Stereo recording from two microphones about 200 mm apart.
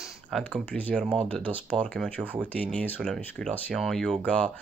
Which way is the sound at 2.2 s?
10° right (ahead or behind).